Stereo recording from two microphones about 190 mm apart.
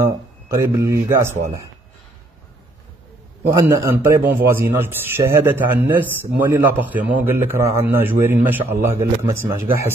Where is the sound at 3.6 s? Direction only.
15° right (ahead or behind).